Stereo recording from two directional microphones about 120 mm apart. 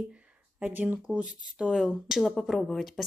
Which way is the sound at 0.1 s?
15° right (ahead or behind).